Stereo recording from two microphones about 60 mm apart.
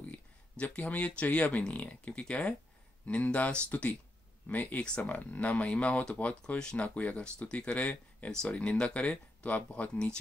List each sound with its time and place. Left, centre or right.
0.1 s speech: left